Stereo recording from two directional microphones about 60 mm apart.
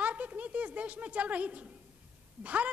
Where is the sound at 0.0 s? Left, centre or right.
Right.